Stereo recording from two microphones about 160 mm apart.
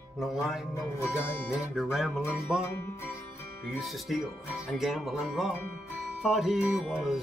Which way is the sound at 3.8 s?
Centre (ahead or behind).